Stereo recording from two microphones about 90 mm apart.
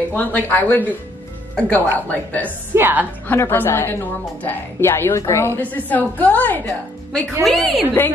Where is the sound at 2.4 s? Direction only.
20° right (ahead or behind).